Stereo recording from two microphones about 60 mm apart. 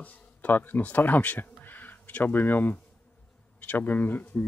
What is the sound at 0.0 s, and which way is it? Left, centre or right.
Speech, left.